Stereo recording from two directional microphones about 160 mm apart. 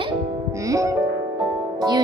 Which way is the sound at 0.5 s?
20° right (ahead or behind).